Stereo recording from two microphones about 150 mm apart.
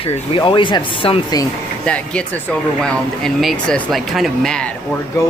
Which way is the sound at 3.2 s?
Centre (ahead or behind).